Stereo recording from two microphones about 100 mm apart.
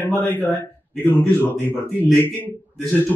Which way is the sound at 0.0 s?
20° left (ahead or behind).